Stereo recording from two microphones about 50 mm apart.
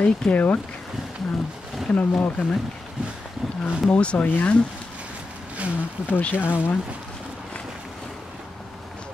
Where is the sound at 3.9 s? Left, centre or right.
Left.